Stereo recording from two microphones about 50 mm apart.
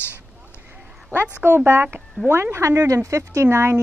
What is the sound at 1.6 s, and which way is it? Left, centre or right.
Speech, right.